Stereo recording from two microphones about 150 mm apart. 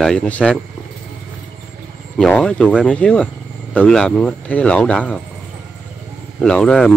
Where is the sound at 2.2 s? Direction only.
5° left (ahead or behind).